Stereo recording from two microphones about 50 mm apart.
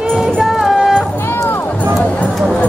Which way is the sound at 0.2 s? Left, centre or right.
Centre.